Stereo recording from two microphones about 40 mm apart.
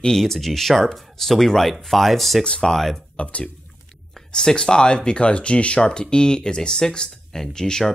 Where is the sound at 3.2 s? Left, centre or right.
Left.